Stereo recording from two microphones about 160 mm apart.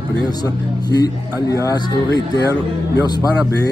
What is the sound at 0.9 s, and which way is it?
Speech, 25° left (ahead or behind).